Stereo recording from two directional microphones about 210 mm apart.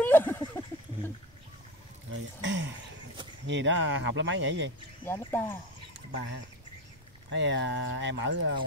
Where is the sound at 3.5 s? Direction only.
60° right (ahead or behind).